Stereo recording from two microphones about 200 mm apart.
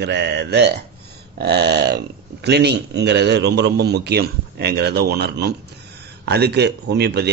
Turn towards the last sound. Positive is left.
turn(degrees=-55)  # may be behind; listen again after turning